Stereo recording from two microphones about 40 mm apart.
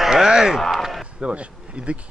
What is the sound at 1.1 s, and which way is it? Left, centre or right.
Insect, right.